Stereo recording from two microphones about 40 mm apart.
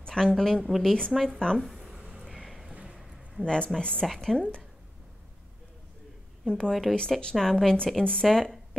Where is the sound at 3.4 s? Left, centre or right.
Left.